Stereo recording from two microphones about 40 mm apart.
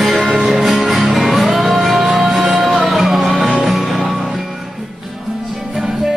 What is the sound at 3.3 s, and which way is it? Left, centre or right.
Music, right.